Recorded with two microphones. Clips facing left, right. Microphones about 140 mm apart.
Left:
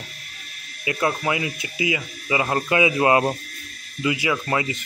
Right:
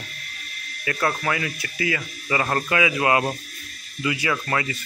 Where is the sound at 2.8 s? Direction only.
25° left (ahead or behind).